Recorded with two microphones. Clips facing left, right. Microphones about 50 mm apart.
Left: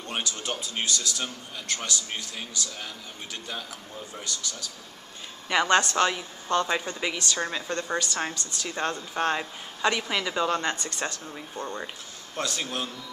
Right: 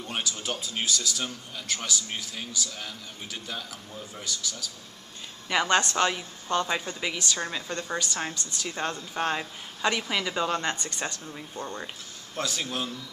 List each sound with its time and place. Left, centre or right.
0.1 s speech: centre
4.1 s a woman's voice: centre
7.7 s speech: centre